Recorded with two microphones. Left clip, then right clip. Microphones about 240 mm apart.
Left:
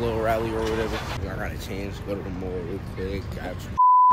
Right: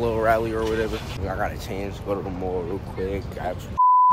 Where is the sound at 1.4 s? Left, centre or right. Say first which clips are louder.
Right 5 dB; centre.